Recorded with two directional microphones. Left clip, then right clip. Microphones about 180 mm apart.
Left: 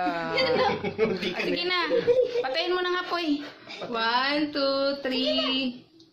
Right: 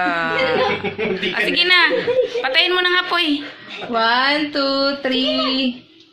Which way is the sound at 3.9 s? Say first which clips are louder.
Right 9 dB; 60° right (ahead or behind).